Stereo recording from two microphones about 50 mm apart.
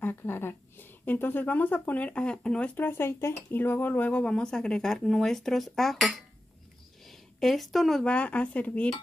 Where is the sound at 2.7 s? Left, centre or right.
Left.